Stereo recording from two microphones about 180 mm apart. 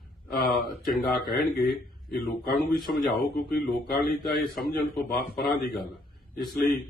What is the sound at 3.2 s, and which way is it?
Speech, 55° left (ahead or behind).